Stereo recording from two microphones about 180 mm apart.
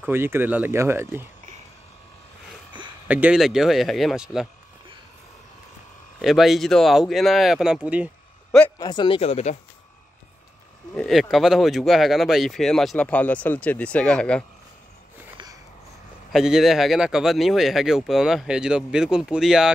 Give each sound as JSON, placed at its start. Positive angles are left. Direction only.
{"t": 0.0, "sound": "speech", "side_deg": -10}
{"t": 3.1, "sound": "speech", "side_deg": -5}
{"t": 6.2, "sound": "speech", "side_deg": 0}
{"t": 8.7, "sound": "speech", "side_deg": 25}
{"t": 11.0, "sound": "speech", "side_deg": 0}
{"t": 16.3, "sound": "speech", "side_deg": -5}